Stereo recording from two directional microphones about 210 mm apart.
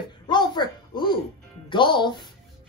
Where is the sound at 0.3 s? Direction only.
20° left (ahead or behind).